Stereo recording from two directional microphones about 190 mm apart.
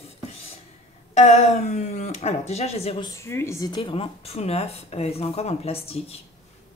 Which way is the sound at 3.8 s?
30° left (ahead or behind).